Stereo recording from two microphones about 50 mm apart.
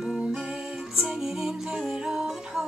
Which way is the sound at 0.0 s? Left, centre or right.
Centre.